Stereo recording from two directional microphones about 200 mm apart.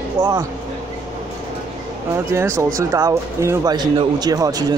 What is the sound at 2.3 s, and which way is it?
Speech, 15° right (ahead or behind).